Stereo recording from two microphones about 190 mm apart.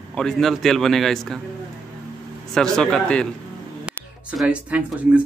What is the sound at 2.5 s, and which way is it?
Speech, 5° left (ahead or behind).